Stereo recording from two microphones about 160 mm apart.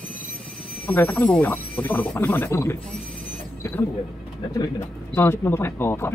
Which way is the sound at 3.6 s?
15° left (ahead or behind).